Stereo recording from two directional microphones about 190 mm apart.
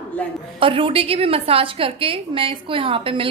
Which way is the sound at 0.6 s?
30° right (ahead or behind).